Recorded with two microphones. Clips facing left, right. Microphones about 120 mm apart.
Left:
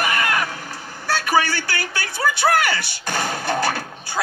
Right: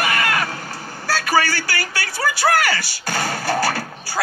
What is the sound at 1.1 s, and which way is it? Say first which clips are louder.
Vehicle: even; centre (ahead or behind).